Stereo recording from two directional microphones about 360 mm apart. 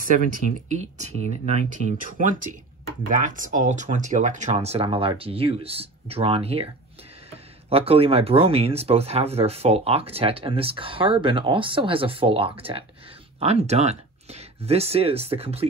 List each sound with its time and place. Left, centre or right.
0.7 s speech: centre